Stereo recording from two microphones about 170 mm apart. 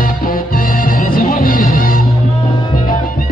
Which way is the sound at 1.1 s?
60° left (ahead or behind).